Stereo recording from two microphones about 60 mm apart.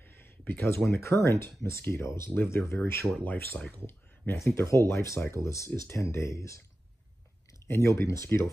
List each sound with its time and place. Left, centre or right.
0.2 s speech: left
3.3 s speech: left
3.8 s speech: left
7.8 s speech: left